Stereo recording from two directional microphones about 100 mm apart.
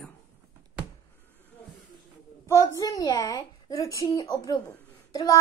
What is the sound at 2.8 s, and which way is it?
A child's voice, 35° left (ahead or behind).